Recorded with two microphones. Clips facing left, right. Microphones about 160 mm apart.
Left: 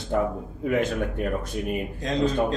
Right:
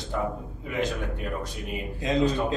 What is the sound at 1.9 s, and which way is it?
Speech, 5° right (ahead or behind).